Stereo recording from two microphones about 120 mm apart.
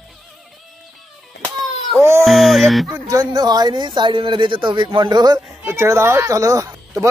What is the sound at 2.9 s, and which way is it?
Speech, 30° right (ahead or behind).